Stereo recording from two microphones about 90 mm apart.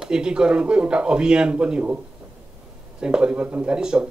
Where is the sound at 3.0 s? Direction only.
10° right (ahead or behind).